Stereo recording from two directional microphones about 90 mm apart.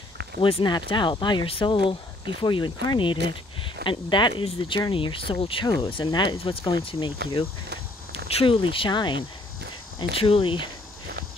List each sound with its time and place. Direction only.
0.4 s speech: 90° left
0.7 s speech: 55° left (ahead or behind); by 2.0 s 75° left (ahead or behind)
2.4 s speech: 55° left (ahead or behind)
8.1 s speech: 80° left; by 9.2 s 60° left (ahead or behind)
10.1 s speech: 80° left